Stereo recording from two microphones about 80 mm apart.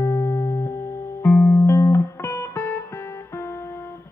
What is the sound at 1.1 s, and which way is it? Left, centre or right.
Music, left.